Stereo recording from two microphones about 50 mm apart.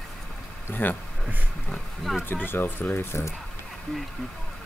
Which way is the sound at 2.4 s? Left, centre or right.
Left.